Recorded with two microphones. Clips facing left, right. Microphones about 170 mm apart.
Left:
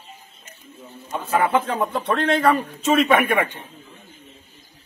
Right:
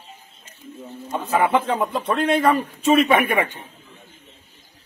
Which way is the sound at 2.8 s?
Centre (ahead or behind).